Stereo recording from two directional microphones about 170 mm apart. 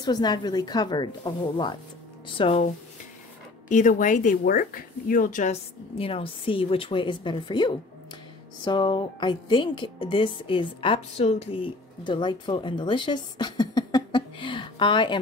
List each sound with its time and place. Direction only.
0.0 s a woman's voice: 25° left (ahead or behind)
3.6 s a woman's voice: 50° left (ahead or behind); by 15.1 s 30° left (ahead or behind)